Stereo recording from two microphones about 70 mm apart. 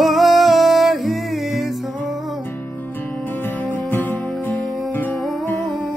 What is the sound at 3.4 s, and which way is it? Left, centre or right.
Music, left.